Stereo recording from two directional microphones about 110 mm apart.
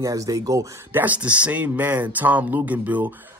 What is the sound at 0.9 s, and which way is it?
Speech, 15° right (ahead or behind).